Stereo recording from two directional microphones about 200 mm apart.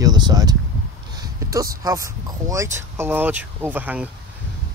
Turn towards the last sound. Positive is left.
turn(degrees=-10)  # may be behind; listen again after turning